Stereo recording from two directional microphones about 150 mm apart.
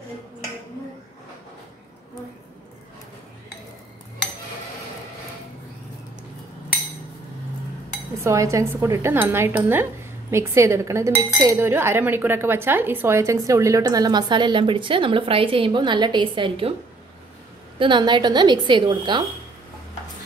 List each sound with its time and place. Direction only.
8.2 s speech: 20° right (ahead or behind); by 16.7 s 35° right (ahead or behind)
17.7 s a woman's voice: 30° right (ahead or behind)